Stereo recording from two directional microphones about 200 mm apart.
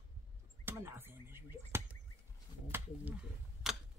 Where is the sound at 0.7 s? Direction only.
10° right (ahead or behind).